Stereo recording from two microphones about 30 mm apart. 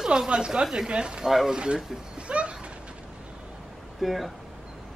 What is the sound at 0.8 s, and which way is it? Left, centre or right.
Speech, right.